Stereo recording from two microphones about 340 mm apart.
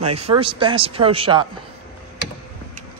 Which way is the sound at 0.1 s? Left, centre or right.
Centre.